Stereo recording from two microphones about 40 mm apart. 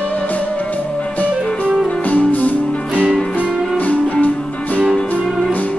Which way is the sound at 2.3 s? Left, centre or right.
Left.